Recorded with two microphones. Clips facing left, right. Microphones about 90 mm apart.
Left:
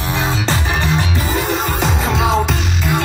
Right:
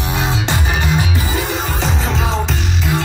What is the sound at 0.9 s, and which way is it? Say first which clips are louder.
Music: left 1 dB; centre (ahead or behind).